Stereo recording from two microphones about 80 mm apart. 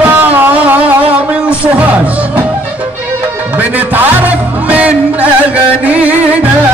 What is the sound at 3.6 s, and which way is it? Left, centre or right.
Music, right.